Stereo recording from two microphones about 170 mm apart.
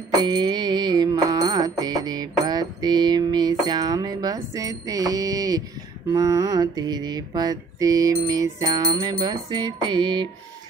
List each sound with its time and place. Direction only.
0.2 s music: 25° right (ahead or behind)